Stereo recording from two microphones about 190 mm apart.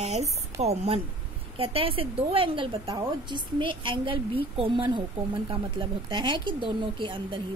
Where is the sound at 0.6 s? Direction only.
35° right (ahead or behind).